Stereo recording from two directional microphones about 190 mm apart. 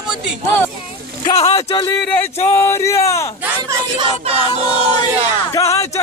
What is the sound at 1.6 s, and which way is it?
Speech, 20° left (ahead or behind).